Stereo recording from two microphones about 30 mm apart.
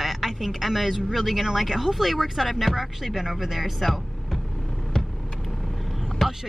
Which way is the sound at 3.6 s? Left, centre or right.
Centre.